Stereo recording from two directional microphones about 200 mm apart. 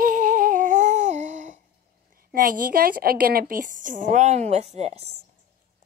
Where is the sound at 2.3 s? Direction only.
45° right (ahead or behind).